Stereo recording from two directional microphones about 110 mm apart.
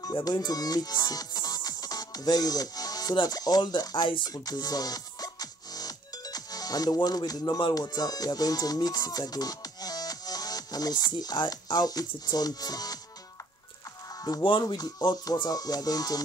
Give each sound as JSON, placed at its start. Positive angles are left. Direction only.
{"t": 0.0, "sound": "speech", "side_deg": 40}
{"t": 14.6, "sound": "music", "side_deg": 35}